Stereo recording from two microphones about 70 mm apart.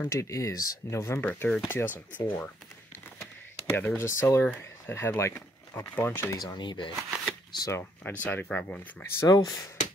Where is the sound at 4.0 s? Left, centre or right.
Left.